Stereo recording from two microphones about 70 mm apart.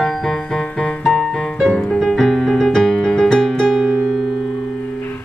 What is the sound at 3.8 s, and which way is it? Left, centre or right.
Music, right.